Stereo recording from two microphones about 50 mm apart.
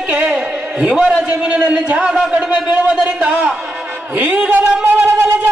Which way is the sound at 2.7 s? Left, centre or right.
Right.